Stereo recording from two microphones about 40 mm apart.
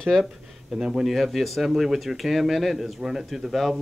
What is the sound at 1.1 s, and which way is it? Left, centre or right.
Speech, centre.